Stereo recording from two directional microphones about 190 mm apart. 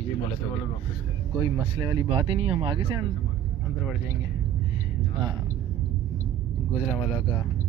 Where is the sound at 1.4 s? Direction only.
20° right (ahead or behind).